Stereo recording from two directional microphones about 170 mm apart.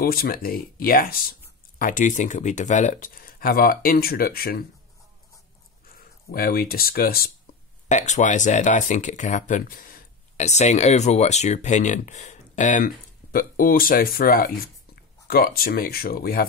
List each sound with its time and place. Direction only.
0.0 s speech: 60° left (ahead or behind)
6.3 s speech: 60° left (ahead or behind)
7.9 s speech: 45° left (ahead or behind); by 16.4 s 60° left (ahead or behind)